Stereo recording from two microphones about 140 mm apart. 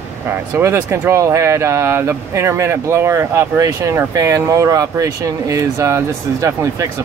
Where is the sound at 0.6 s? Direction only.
20° right (ahead or behind).